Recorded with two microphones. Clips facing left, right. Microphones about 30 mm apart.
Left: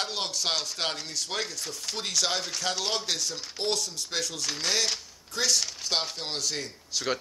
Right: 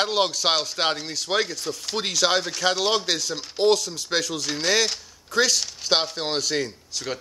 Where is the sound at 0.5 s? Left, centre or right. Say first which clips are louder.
Right 7 dB; right.